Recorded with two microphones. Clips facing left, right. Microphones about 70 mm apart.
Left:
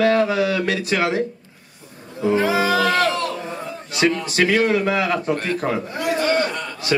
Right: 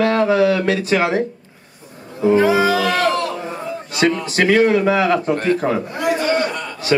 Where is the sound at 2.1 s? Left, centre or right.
Right.